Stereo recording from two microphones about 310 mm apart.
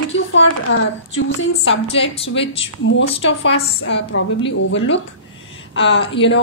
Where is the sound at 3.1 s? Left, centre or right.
Left.